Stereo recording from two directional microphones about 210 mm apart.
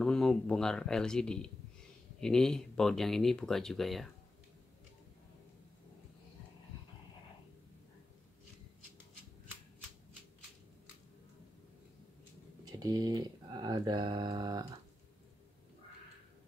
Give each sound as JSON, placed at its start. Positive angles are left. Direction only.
{"t": 0.0, "sound": "speech", "side_deg": 0}
{"t": 12.6, "sound": "speech", "side_deg": -15}